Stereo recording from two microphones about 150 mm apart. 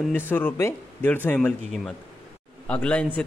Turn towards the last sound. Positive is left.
turn(degrees=5)  # may be behind; listen again after turning